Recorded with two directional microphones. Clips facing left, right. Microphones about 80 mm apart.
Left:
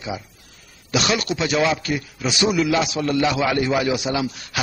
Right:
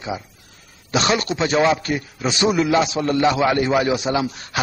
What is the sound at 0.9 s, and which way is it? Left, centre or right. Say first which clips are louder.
A man's voice: right 2 dB; right.